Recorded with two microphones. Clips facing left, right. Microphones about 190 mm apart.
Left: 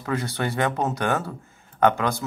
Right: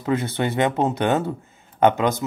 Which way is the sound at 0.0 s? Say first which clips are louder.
Right 4 dB; 20° right (ahead or behind).